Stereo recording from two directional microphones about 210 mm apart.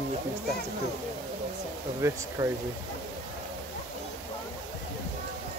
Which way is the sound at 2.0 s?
15° right (ahead or behind).